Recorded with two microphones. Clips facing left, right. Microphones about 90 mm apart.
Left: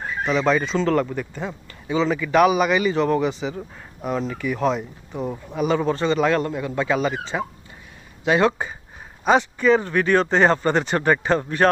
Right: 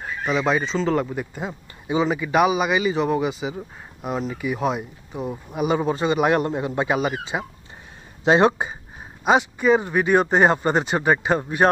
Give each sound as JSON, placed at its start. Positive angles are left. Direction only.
{"t": 0.2, "sound": "a man's voice", "side_deg": -10}
{"t": 2.3, "sound": "a man's voice", "side_deg": -5}
{"t": 5.5, "sound": "a man's voice", "side_deg": -15}
{"t": 9.2, "sound": "a man's voice", "side_deg": -10}